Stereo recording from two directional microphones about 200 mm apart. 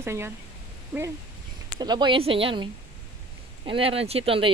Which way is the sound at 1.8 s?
20° right (ahead or behind).